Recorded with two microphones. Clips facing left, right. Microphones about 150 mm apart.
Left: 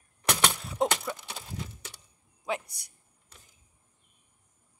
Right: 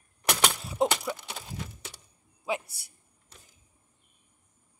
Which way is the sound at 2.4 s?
5° right (ahead or behind).